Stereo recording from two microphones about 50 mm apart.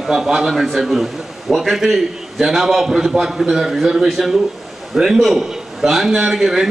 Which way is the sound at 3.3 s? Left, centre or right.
Centre.